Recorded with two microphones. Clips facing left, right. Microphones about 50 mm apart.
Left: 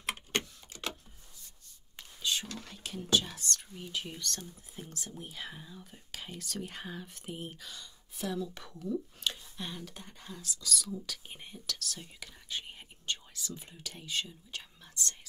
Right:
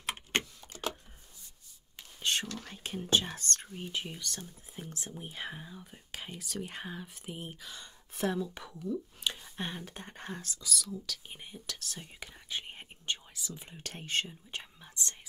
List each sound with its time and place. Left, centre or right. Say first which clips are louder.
2.2 s whispering: right 2 dB; right
2.7 s speech: even; right
4.1 s speech: left 1 dB; centre
8.1 s speech: right 4 dB; right
8.6 s speech: even; centre
9.4 s a sound: right 3 dB; right
10.2 s speech: right 3 dB; right
10.7 s speech: left 1 dB; centre
11.6 s speech: left 6 dB; right
12.7 s whispering: right 1 dB; right
13.8 s speech: right 3 dB; right
14.5 s whispering: right 2 dB; right